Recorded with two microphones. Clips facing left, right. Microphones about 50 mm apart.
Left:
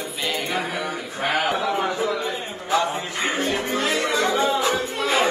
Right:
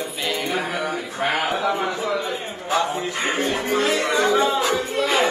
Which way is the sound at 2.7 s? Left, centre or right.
Right.